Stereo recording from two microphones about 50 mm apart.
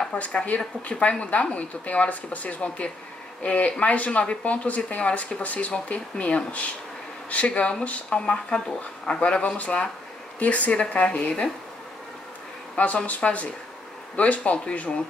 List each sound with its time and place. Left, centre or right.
0.1 s speech: left
12.7 s speech: left